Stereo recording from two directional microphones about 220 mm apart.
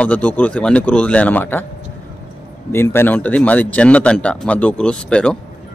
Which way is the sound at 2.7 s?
10° left (ahead or behind).